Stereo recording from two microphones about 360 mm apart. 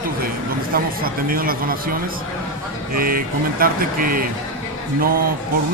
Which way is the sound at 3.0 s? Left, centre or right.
Right.